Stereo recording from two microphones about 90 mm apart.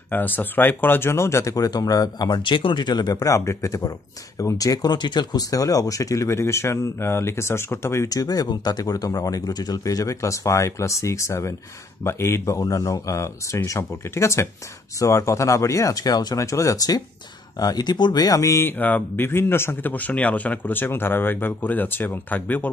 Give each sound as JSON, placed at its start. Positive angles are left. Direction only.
{"t": 0.1, "sound": "speech", "side_deg": 20}
{"t": 8.1, "sound": "speech", "side_deg": 45}
{"t": 16.3, "sound": "speech", "side_deg": 35}